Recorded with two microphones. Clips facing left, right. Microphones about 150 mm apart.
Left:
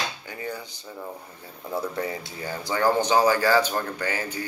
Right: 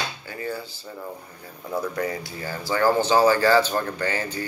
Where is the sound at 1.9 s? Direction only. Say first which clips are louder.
Right 2 dB; 20° left (ahead or behind).